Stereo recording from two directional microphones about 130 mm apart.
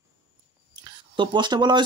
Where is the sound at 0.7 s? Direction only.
35° right (ahead or behind).